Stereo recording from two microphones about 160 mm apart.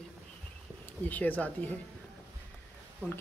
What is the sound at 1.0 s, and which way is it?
Speech, 10° left (ahead or behind).